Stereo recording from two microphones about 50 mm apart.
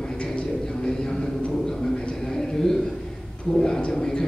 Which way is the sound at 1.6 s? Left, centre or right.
Centre.